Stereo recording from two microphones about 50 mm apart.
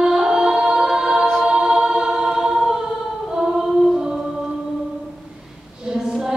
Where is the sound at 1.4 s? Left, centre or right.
Centre.